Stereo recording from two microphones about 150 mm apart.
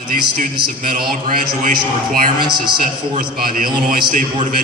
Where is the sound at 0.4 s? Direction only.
75° right (ahead or behind).